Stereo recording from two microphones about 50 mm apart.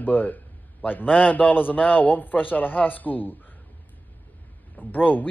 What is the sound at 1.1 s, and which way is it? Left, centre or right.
Speech, left.